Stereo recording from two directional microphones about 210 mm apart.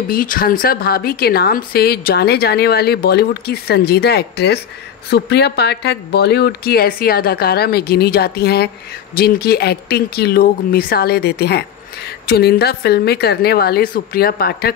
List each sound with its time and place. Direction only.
0.1 s speech: 40° left (ahead or behind)